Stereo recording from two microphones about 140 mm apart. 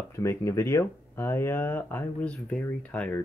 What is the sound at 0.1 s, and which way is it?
Speech, 20° left (ahead or behind).